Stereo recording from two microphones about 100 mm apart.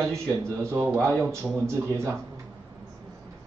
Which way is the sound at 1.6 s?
30° right (ahead or behind).